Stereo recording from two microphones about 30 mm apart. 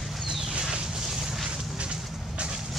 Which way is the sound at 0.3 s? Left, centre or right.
Right.